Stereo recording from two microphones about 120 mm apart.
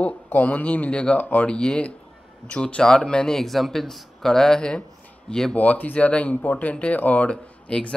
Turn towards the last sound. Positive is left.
turn(degrees=10)  # may be behind; listen again after turning